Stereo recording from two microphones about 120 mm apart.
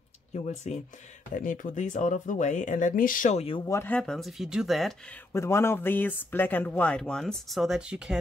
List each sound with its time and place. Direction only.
0.3 s speech: 70° left (ahead or behind)
1.3 s speech: 90° left
3.6 s speech: 25° left (ahead or behind)
3.9 s speech: 5° left (ahead or behind)
5.3 s speech: 20° left (ahead or behind); by 8.2 s 5° right (ahead or behind)